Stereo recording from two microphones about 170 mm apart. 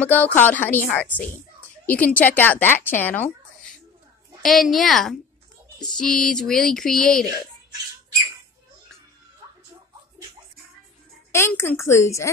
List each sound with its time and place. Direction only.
0.0 s a woman's voice: 10° left (ahead or behind)
11.3 s a woman's voice: 15° left (ahead or behind)